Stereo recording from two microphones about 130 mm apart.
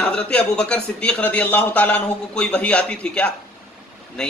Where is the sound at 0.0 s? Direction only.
5° left (ahead or behind).